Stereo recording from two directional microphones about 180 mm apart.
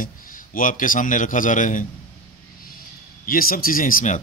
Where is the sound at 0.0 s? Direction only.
50° left (ahead or behind).